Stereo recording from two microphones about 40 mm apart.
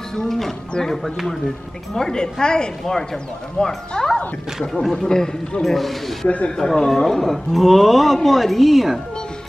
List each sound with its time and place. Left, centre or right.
0.1 s a man's voice: centre
6.2 s speech: left
6.5 s a man's voice: centre